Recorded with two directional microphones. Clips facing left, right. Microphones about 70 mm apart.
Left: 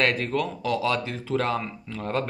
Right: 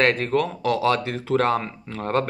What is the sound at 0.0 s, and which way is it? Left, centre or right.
Speech, right.